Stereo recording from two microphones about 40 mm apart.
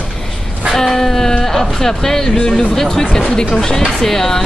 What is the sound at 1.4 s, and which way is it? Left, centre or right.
Speech, centre.